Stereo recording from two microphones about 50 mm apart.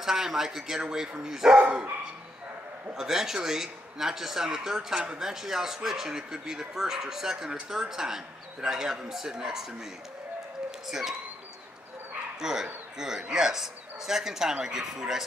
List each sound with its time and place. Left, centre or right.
0.0 s a man's voice: centre
1.6 s dog: centre
2.9 s a man's voice: centre
10.9 s a man's voice: centre
12.4 s a man's voice: centre